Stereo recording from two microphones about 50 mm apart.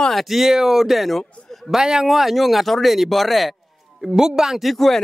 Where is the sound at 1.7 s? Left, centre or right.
Centre.